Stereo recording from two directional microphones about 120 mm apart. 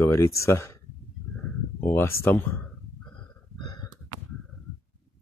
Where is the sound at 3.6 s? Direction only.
35° left (ahead or behind).